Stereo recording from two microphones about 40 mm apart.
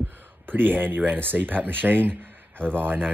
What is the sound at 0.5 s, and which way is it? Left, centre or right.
Speech, right.